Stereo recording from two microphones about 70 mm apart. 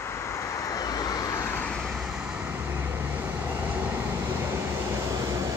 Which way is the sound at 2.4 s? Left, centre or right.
Right.